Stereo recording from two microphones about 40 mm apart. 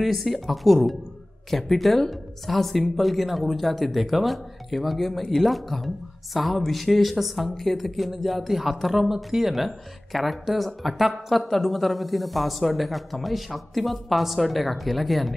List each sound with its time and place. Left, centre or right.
0.0 s speech: centre
9.5 s speech: centre